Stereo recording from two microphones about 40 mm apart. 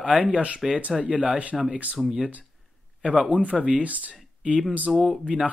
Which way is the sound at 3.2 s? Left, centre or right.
Right.